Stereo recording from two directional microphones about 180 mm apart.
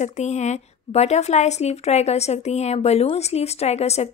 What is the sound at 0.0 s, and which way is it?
A woman's voice, 40° left (ahead or behind).